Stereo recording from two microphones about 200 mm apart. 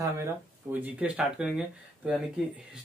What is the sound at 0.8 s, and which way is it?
Speech, 5° right (ahead or behind).